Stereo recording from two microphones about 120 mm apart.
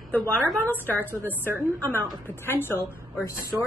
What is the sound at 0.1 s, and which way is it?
Speech, 15° left (ahead or behind).